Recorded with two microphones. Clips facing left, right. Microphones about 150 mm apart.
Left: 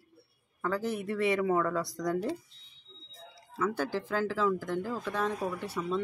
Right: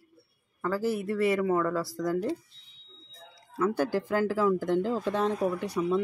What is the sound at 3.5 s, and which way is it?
Speech, 10° right (ahead or behind).